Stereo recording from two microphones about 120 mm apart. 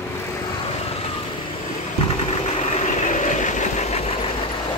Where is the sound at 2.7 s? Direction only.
90° left; by 4.1 s 65° left (ahead or behind).